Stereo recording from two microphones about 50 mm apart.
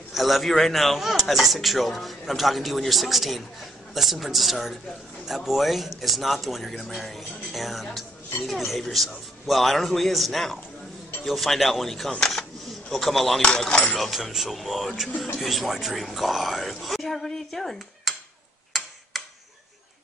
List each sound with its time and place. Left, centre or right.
0.1 s speech: centre
13.4 s speech: centre
13.9 s speech: centre
18.7 s tick-tock: centre